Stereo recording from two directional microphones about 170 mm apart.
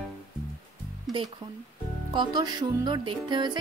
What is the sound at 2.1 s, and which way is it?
Music, 25° right (ahead or behind).